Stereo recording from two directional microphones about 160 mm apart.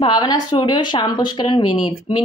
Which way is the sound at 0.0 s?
25° left (ahead or behind).